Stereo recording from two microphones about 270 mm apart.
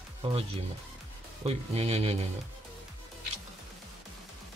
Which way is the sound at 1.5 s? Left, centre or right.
Right.